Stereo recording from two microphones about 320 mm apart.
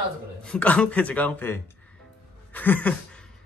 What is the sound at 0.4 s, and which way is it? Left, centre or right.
Speech, centre.